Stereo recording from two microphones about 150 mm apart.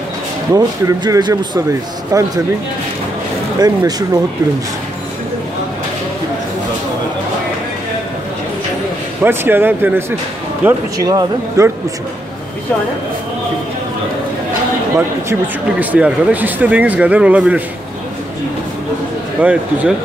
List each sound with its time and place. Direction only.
0.5 s speech: 25° right (ahead or behind)
3.5 s speech: 25° right (ahead or behind)
9.2 s speech: 15° right (ahead or behind)
11.0 s speech: 25° right (ahead or behind)
15.0 s speech: 15° right (ahead or behind)
19.4 s speech: 10° right (ahead or behind)